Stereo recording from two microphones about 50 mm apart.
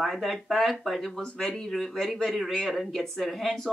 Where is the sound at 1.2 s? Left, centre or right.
Centre.